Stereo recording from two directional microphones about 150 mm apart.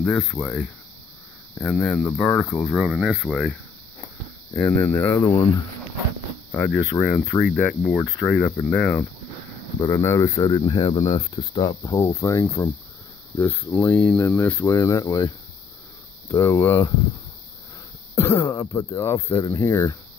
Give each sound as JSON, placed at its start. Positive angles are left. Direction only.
{"t": 0.0, "sound": "speech", "side_deg": 10}
{"t": 2.7, "sound": "speech", "side_deg": -5}
{"t": 4.6, "sound": "speech", "side_deg": 15}
{"t": 7.0, "sound": "speech", "side_deg": 5}
{"t": 9.8, "sound": "speech", "side_deg": 20}
{"t": 18.1, "sound": "speech", "side_deg": 20}